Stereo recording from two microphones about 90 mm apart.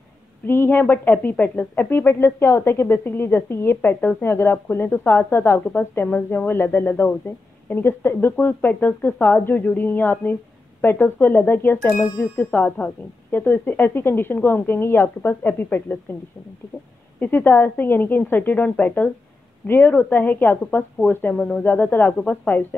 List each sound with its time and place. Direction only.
0.5 s speech: 25° left (ahead or behind)
17.2 s speech: 25° left (ahead or behind)
21.4 s speech: 10° left (ahead or behind)
21.6 s speech: 20° left (ahead or behind)